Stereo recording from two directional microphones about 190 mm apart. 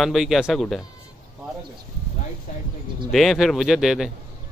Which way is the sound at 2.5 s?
40° left (ahead or behind).